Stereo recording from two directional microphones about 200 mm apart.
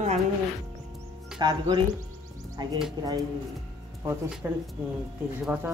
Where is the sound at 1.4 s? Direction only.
20° right (ahead or behind).